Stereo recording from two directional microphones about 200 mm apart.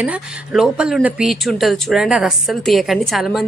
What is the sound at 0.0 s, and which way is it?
Speech, 5° right (ahead or behind).